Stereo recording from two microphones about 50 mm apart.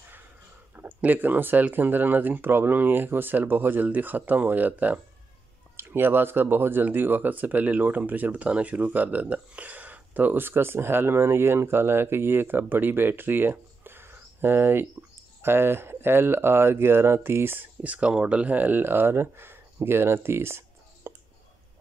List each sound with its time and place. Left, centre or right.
0.7 s speech: right
5.8 s speech: right
17.8 s speech: right